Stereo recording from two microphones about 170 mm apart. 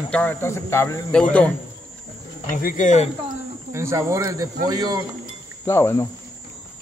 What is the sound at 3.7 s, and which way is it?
Speech, 15° right (ahead or behind).